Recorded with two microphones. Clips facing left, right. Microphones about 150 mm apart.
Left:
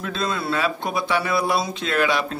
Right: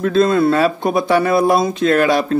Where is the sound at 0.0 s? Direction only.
50° right (ahead or behind).